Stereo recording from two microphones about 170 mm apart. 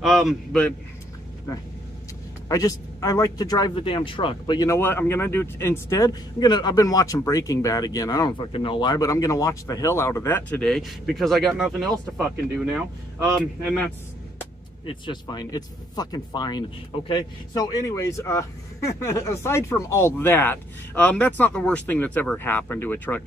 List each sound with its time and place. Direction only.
0.0 s a man's voice: centre (ahead or behind)
2.4 s speech: 20° left (ahead or behind); by 12.8 s 5° right (ahead or behind)
13.7 s speech: 10° left (ahead or behind)
14.9 s speech: 25° left (ahead or behind); by 23.2 s 10° left (ahead or behind)